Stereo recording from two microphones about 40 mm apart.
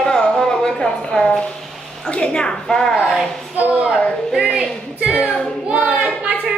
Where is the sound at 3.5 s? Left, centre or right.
Right.